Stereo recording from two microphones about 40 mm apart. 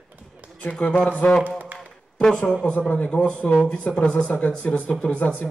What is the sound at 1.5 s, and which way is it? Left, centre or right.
Speech, right.